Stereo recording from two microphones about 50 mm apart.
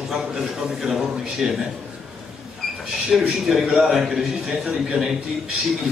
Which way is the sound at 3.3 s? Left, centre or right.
Centre.